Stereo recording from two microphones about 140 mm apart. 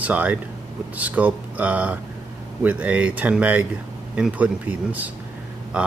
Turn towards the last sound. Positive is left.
turn(degrees=-10)  # may be behind; listen again after turning